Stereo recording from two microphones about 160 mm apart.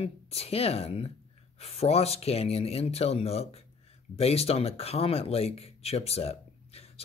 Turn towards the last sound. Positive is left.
turn(degrees=40)  # may be behind; listen again after turning